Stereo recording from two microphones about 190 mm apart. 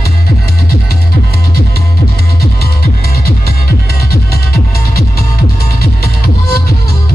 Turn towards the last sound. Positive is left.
turn(degrees=50)  # may be behind; listen again after turning